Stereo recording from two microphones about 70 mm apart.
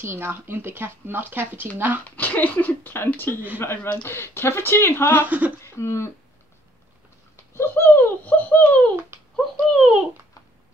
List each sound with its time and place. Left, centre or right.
0.0 s speech: right
2.0 s speech: left
5.2 s speech: right
5.6 s speech: left
7.5 s a sound: left
9.7 s a sound: centre